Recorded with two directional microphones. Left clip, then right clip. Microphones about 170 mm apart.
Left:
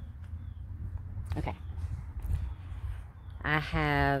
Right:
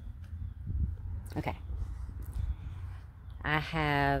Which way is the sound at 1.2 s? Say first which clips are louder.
Right 1 dB; 45° right (ahead or behind).